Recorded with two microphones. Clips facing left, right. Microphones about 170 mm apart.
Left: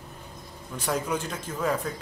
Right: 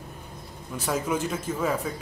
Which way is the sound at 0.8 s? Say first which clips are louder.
Right 2 dB; 5° right (ahead or behind).